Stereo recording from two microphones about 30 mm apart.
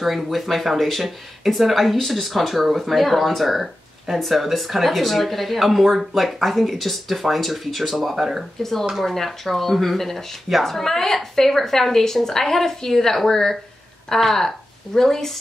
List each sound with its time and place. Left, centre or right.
0.0 s speech: centre
8.2 s speech: centre
9.0 s a woman's voice: centre